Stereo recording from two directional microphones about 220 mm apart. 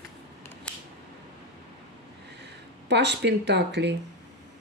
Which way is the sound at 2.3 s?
50° right (ahead or behind).